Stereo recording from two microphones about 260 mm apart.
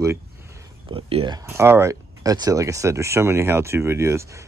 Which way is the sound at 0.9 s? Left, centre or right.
Right.